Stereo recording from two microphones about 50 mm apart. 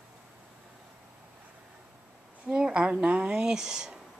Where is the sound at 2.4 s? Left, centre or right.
Centre.